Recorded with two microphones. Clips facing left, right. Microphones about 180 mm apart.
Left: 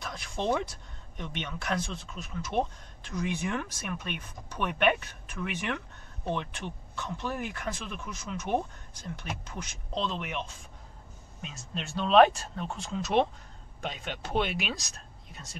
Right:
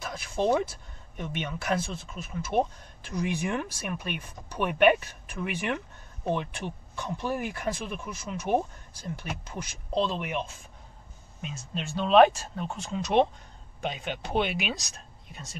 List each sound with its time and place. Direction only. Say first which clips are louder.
0.0 s speech: right 5 dB; 5° right (ahead or behind)